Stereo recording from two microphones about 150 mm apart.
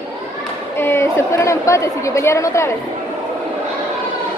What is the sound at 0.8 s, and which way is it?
A woman's voice, 15° left (ahead or behind).